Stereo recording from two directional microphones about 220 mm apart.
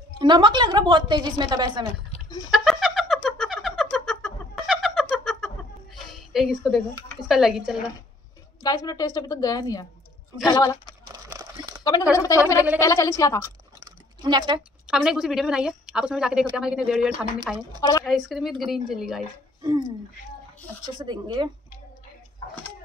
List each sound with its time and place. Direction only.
0.2 s a woman's voice: 20° right (ahead or behind)
2.5 s a sound: centre (ahead or behind)
7.2 s speech: centre (ahead or behind)
8.6 s a woman's voice: 15° left (ahead or behind)
11.1 s crumpling: 15° right (ahead or behind)
11.8 s a woman's voice: 15° left (ahead or behind)
13.8 s a sound: 20° right (ahead or behind)
14.9 s speech: centre (ahead or behind)
20.8 s a woman's voice: 20° right (ahead or behind)